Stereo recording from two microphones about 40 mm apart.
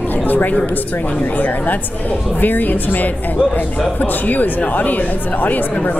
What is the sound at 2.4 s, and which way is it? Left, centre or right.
Speech, left.